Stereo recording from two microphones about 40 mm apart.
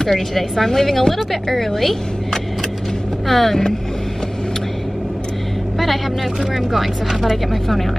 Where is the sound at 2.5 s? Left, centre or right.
Centre.